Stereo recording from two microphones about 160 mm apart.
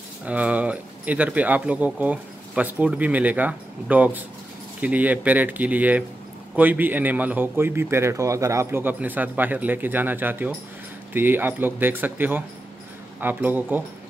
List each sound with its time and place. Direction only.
0.2 s speech: 10° right (ahead or behind)